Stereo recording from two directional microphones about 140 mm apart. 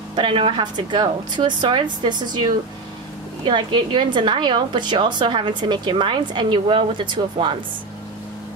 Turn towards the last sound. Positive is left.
turn(degrees=-35)  # may be behind; listen again after turning